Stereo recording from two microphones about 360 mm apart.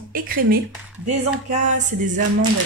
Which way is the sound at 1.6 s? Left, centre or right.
Right.